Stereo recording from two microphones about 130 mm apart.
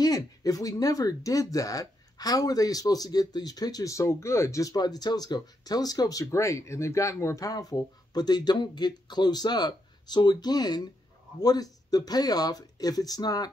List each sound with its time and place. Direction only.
0.0 s speech: 30° left (ahead or behind)